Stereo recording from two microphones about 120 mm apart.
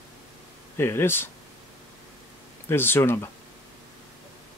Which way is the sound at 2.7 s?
20° left (ahead or behind).